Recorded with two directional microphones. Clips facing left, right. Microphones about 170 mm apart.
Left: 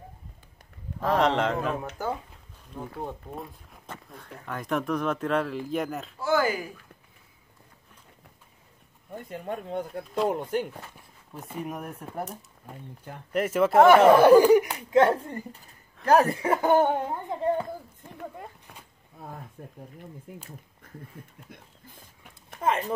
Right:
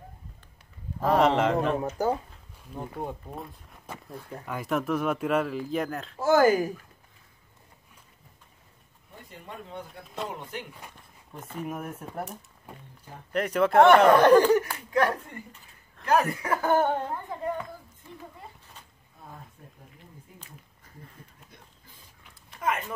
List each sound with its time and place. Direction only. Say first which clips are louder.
1.0 s speech: right 2 dB; centre (ahead or behind)
2.0 s speech: right 5 dB; 40° right (ahead or behind)
2.7 s speech: right 1 dB; 5° right (ahead or behind)
6.1 s speech: right 5 dB; 45° right (ahead or behind)
9.1 s speech: left 9 dB; 50° left (ahead or behind)
11.0 s speech: left 1 dB; 10° left (ahead or behind)
11.6 s speech: right 2 dB; centre (ahead or behind); by 17.6 s 30° left (ahead or behind)
19.6 s speech: left 8 dB; 55° left (ahead or behind)
21.5 s speech: left 5 dB; 50° left (ahead or behind)
22.6 s speech: left 4 dB; 30° left (ahead or behind)